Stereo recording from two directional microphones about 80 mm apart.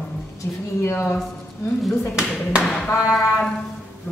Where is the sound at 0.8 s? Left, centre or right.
Left.